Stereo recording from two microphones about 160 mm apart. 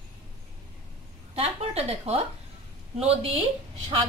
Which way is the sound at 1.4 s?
40° right (ahead or behind).